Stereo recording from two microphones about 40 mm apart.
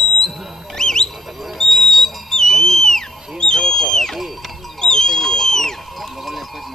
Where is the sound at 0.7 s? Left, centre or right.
Centre.